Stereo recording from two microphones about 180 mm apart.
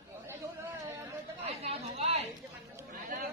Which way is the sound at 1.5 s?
35° right (ahead or behind).